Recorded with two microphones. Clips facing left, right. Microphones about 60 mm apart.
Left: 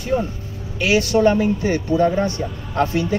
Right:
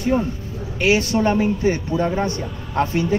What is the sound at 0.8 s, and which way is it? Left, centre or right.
Speech, right.